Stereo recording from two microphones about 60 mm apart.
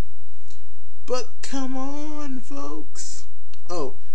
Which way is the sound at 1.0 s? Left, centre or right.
Centre.